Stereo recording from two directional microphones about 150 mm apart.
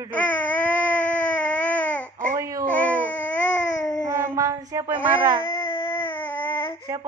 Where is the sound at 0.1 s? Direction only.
10° left (ahead or behind).